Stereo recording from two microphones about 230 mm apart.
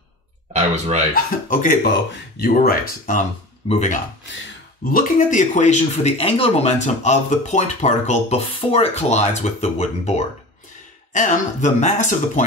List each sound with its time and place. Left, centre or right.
0.5 s speech: right
1.1 s speech: left